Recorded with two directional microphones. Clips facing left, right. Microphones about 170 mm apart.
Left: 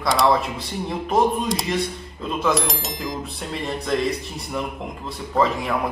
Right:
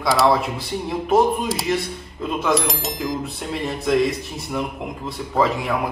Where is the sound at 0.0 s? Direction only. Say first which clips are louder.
Right 2 dB; centre (ahead or behind).